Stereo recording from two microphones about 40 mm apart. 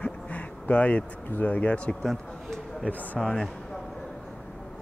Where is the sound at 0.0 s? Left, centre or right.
Left.